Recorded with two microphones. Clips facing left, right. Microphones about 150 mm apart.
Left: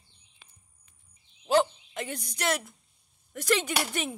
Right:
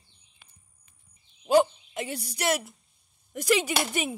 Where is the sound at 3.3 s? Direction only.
10° right (ahead or behind).